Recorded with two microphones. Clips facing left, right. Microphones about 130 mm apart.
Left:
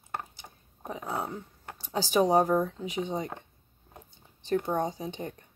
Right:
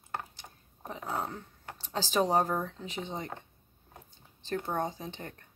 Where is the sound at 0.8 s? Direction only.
15° left (ahead or behind).